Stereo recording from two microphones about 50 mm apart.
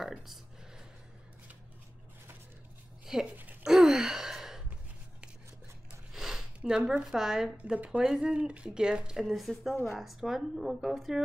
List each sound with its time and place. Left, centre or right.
3.1 s speech: centre
3.6 s gasp: centre
5.9 s a sound: centre
7.1 s speech: centre
7.5 s speech: right
8.0 s speech: centre
9.1 s speech: centre